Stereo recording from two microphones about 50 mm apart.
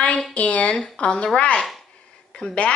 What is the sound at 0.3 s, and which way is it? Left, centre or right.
Speech, left.